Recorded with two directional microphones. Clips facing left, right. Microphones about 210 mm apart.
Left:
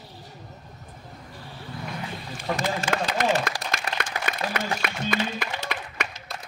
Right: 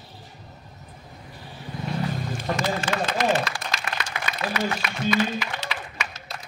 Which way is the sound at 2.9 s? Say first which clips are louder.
Even; 50° left (ahead or behind).